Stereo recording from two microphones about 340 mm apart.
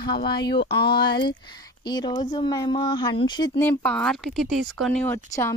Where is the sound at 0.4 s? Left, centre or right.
Left.